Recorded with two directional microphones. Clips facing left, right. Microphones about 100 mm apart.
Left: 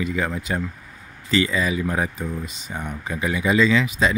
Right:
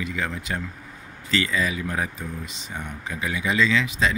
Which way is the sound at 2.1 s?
45° left (ahead or behind).